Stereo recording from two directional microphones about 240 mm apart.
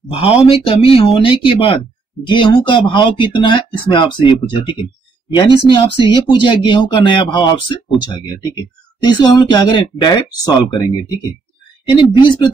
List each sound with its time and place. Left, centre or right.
0.1 s speech: left
9.0 s speech: centre
12.0 s speech: centre